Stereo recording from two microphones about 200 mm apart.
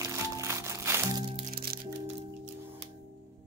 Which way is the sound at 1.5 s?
50° right (ahead or behind).